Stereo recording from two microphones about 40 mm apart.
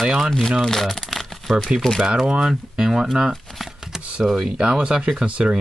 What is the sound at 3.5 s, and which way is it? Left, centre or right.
Speech, centre.